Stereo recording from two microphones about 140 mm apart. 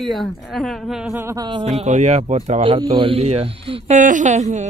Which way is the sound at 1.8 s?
55° right (ahead or behind).